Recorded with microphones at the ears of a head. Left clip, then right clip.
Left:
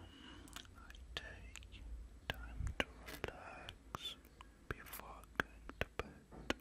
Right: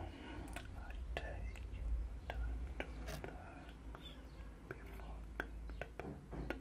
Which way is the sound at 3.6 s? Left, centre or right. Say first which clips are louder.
Left 7 dB; left.